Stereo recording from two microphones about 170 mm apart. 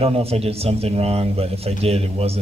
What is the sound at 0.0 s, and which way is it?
A man's voice, 35° right (ahead or behind).